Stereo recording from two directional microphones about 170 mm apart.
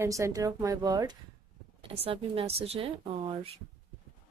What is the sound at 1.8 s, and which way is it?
Speech, 35° right (ahead or behind).